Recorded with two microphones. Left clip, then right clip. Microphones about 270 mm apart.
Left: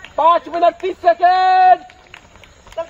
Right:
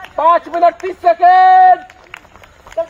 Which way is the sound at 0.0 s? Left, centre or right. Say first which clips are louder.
Right 2 dB; centre.